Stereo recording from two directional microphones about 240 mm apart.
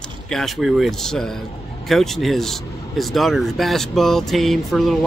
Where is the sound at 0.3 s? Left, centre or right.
Centre.